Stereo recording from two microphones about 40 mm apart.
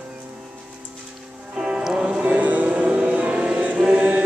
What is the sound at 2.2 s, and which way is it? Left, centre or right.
Music, right.